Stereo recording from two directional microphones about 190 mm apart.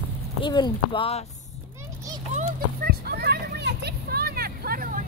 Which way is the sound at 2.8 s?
55° right (ahead or behind).